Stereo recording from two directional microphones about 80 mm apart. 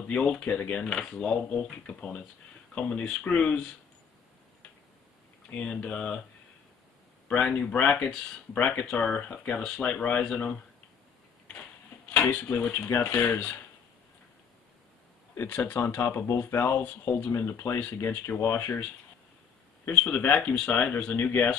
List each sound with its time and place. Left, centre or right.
0.0 s speech: centre
5.5 s speech: centre
7.2 s speech: centre
12.1 s speech: centre
15.4 s speech: left
16.3 s speech: left
17.3 s speech: left
19.9 s speech: centre